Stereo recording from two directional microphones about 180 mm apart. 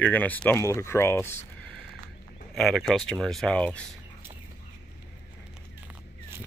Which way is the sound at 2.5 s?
Centre (ahead or behind).